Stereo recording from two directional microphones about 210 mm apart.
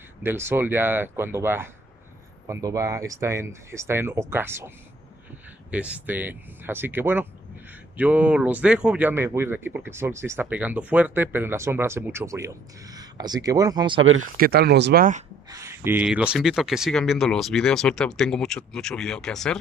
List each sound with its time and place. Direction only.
0.2 s speech: 10° right (ahead or behind)
14.0 s speech: 75° right (ahead or behind)
14.3 s speech: 45° right (ahead or behind)
15.5 s speech: 15° right (ahead or behind); by 19.6 s 5° left (ahead or behind)